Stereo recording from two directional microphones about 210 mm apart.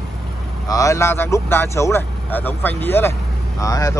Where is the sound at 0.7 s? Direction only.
15° left (ahead or behind).